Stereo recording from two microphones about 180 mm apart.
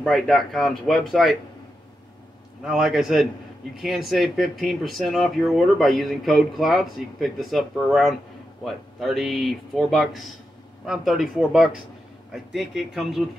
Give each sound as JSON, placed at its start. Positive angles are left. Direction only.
{"t": 0.0, "sound": "speech", "side_deg": 0}
{"t": 2.6, "sound": "speech", "side_deg": -5}